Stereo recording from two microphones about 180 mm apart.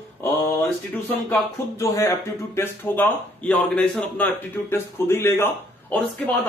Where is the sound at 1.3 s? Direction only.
15° left (ahead or behind).